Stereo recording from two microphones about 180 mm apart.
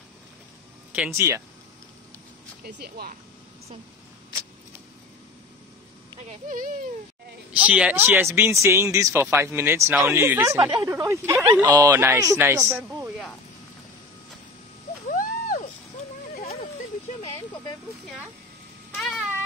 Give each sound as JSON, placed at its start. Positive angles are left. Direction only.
{"t": 0.9, "sound": "speech", "side_deg": -10}
{"t": 2.6, "sound": "speech", "side_deg": -60}
{"t": 6.2, "sound": "speech", "side_deg": -50}
{"t": 7.5, "sound": "speech", "side_deg": -5}
{"t": 15.0, "sound": "a sound", "side_deg": 50}